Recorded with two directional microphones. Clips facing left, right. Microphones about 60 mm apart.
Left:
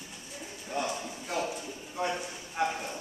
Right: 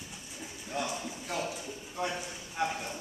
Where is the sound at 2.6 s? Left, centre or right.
Centre.